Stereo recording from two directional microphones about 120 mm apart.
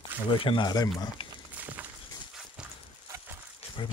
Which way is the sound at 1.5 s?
15° right (ahead or behind).